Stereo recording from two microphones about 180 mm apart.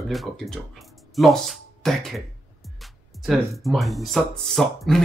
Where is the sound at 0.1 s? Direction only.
Centre (ahead or behind).